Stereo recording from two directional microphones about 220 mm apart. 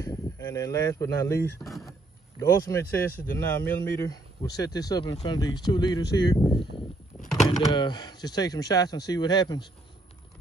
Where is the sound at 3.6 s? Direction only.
15° left (ahead or behind).